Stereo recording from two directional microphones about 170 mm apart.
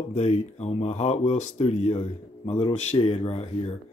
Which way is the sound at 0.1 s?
40° left (ahead or behind).